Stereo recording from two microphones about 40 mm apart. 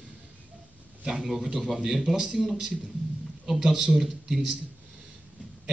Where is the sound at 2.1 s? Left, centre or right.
Right.